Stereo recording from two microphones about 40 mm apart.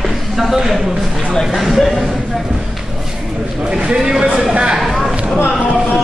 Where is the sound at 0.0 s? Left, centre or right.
Centre.